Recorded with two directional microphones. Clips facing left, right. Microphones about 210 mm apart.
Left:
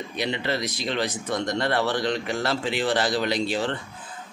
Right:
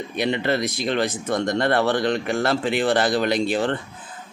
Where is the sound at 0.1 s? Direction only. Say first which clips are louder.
Right 5 dB; 50° right (ahead or behind).